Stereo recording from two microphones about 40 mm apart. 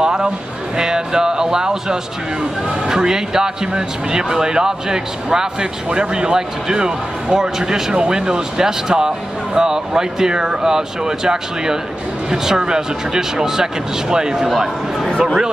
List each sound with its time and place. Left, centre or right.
0.0 s speech: centre
15.0 s speech: centre